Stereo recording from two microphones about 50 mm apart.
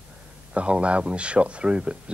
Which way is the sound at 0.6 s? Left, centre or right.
Right.